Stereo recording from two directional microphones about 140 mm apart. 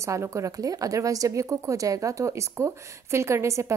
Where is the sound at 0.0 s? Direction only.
20° right (ahead or behind).